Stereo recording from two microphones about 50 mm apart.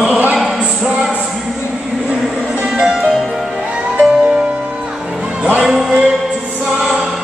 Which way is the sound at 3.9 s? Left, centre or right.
Right.